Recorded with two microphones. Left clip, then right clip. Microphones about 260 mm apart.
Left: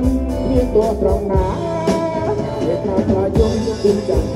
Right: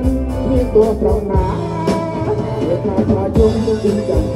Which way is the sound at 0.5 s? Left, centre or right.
Left.